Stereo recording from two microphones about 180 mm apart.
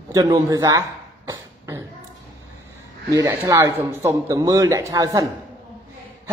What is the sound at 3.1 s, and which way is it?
A man's voice, 20° right (ahead or behind).